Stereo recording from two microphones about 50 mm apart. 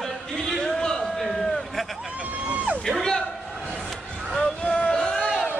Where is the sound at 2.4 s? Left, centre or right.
Right.